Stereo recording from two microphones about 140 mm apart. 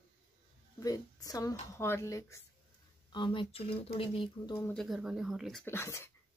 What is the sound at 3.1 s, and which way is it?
Speech, 35° left (ahead or behind).